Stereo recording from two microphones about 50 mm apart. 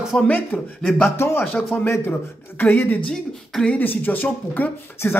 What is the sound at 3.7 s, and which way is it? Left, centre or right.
Speech, left.